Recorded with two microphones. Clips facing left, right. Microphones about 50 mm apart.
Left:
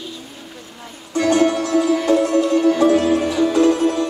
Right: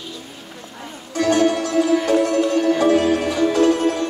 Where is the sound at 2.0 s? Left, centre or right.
Left.